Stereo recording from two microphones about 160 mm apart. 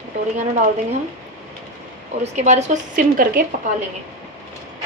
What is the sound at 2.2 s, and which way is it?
A woman's voice, 45° right (ahead or behind).